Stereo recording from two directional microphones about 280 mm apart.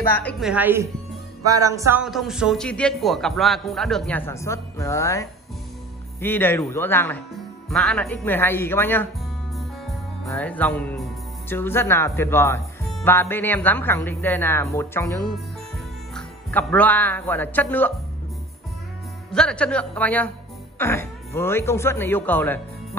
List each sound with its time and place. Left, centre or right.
0.0 s a man's voice: centre
10.2 s speech: centre
19.3 s a man's voice: centre